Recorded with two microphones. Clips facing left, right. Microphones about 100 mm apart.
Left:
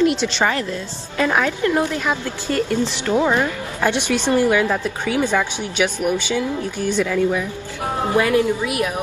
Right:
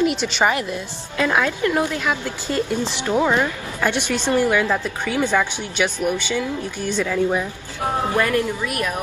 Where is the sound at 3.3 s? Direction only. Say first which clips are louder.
Left 1 dB; 15° left (ahead or behind).